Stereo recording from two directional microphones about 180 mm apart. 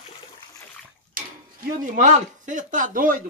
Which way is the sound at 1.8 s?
45° right (ahead or behind).